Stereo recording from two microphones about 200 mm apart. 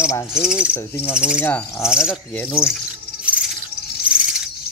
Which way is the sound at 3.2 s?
5° right (ahead or behind).